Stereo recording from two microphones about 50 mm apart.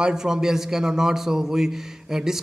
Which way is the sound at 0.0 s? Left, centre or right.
Centre.